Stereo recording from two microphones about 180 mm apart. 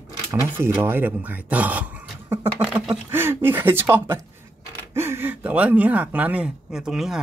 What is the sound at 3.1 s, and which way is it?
Speech, 15° right (ahead or behind).